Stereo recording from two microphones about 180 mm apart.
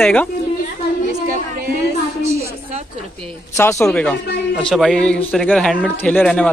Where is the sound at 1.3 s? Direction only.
55° right (ahead or behind).